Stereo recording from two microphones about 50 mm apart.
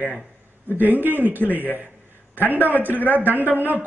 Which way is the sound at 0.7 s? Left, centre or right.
Right.